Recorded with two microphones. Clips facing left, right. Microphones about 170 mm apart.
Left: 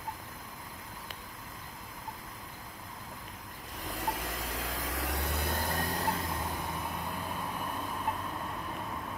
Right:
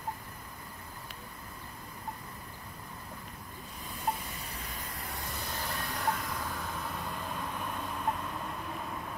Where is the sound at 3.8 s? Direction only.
90° left; by 6.0 s 45° left (ahead or behind).